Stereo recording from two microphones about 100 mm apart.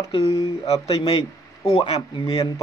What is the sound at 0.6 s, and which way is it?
Speech, 85° left.